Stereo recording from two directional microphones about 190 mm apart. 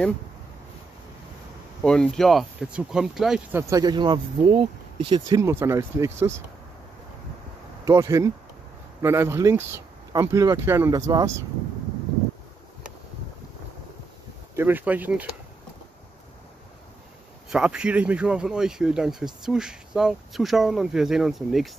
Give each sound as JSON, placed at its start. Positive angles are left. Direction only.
{"t": 1.8, "sound": "speech", "side_deg": 5}
{"t": 3.7, "sound": "speech", "side_deg": -20}
{"t": 7.8, "sound": "speech", "side_deg": -15}
{"t": 14.5, "sound": "speech", "side_deg": -10}
{"t": 17.5, "sound": "speech", "side_deg": -5}